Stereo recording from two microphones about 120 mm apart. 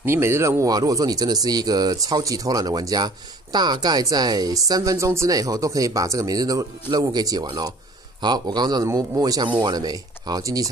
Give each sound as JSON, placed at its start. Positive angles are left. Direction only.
{"t": 0.0, "sound": "speech", "side_deg": -20}